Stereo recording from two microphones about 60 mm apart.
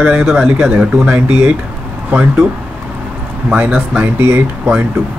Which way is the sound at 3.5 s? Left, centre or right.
Centre.